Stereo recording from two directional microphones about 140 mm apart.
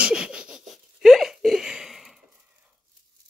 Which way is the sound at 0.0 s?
5° right (ahead or behind).